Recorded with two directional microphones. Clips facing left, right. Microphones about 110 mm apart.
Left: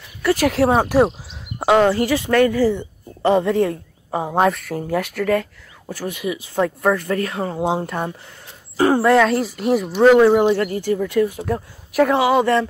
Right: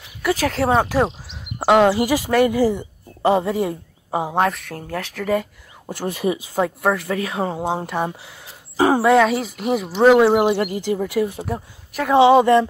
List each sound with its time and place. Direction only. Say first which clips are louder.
0.4 s speech: left 2 dB; 5° left (ahead or behind)
1.6 s speech: even; 5° right (ahead or behind)
4.4 s speech: left 5 dB; centre (ahead or behind)
5.2 s speech: right 2 dB; 10° right (ahead or behind)
6.0 s speech: right 3 dB; 35° right (ahead or behind)
6.5 s speech: left 5 dB; 5° right (ahead or behind)
9.9 s a woman's voice: left 1 dB; 10° right (ahead or behind)